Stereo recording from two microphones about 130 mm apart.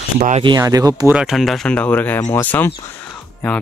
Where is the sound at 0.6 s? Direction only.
25° right (ahead or behind).